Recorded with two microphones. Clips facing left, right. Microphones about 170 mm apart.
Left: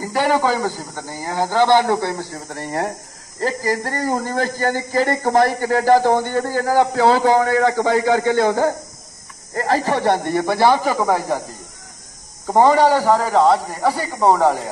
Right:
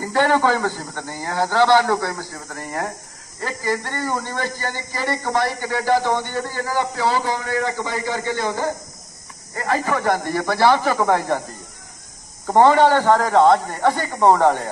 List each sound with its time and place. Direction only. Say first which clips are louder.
0.0 s a man's voice: even; 10° left (ahead or behind); by 6.8 s 45° left (ahead or behind)
6.8 s a man's voice: left 6 dB; 60° left (ahead or behind)
9.7 s a man's voice: left 2 dB; 35° left (ahead or behind); by 11.4 s 5° left (ahead or behind)
12.4 s a man's voice: even; 10° left (ahead or behind)